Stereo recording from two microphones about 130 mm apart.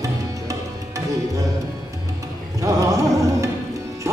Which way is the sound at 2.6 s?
25° right (ahead or behind).